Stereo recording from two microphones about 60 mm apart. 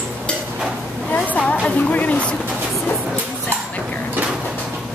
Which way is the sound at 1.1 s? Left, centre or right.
Left.